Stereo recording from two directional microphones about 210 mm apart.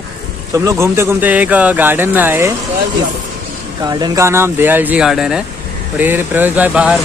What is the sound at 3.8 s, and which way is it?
Speech, 20° right (ahead or behind).